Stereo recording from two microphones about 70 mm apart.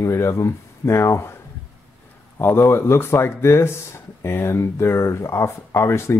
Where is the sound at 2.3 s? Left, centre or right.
Left.